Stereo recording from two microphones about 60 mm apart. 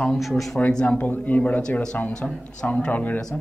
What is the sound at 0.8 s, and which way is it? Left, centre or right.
Speech, left.